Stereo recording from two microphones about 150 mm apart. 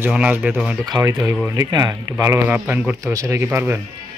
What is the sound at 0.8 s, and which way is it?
Speech, 25° right (ahead or behind).